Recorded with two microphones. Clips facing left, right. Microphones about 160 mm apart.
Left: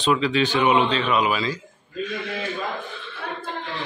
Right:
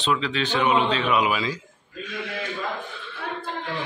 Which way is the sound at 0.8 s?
5° right (ahead or behind).